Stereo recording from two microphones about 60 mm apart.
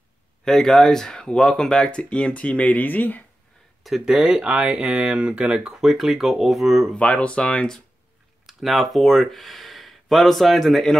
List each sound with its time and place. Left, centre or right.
0.5 s speech: centre; by 3.3 s left
4.0 s speech: centre
5.7 s speech: centre
7.0 s speech: left
8.5 s typing: centre
8.9 s speech: centre